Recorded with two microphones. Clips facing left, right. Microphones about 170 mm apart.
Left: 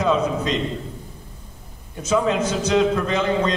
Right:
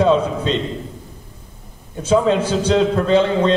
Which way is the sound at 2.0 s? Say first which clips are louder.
Right 4 dB; 30° right (ahead or behind).